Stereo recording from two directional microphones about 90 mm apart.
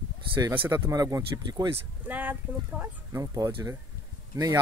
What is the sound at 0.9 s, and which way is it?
Speech, 45° right (ahead or behind).